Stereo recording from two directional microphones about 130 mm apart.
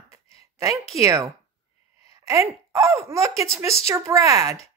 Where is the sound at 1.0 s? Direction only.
25° right (ahead or behind).